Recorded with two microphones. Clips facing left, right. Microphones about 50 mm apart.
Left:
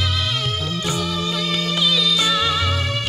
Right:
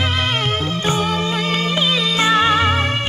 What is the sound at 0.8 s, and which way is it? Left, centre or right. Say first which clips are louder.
Music: right 5 dB; right.